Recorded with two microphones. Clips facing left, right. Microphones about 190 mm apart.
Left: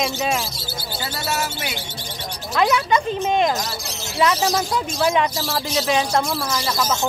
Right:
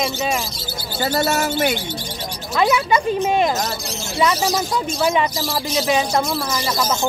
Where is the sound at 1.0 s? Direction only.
50° right (ahead or behind).